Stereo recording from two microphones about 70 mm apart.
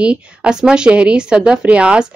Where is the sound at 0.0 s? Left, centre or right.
Centre.